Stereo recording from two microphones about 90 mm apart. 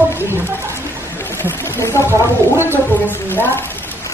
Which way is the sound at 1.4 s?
25° left (ahead or behind).